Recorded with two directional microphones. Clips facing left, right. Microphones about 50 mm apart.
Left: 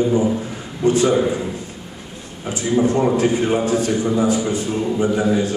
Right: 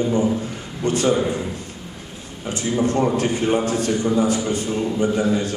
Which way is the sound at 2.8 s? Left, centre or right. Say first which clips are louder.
Left 2 dB; left.